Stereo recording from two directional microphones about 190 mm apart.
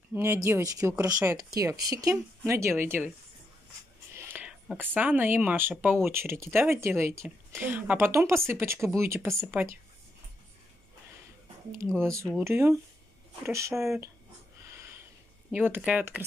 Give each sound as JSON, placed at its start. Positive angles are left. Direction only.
{"t": 0.1, "sound": "speech", "side_deg": -15}
{"t": 4.1, "sound": "speech", "side_deg": -10}
{"t": 12.0, "sound": "speech", "side_deg": -15}
{"t": 15.5, "sound": "speech", "side_deg": -10}